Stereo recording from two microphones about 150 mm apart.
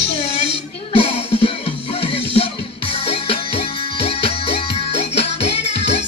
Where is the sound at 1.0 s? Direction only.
40° left (ahead or behind).